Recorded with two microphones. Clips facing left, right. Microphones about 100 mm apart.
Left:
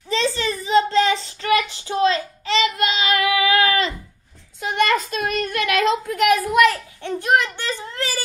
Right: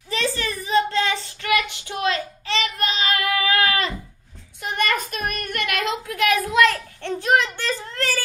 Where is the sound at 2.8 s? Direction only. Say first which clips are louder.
Left 3 dB; 35° right (ahead or behind).